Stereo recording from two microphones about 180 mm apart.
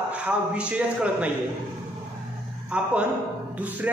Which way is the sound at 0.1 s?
5° right (ahead or behind).